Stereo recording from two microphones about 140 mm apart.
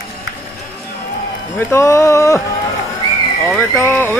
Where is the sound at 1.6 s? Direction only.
20° left (ahead or behind).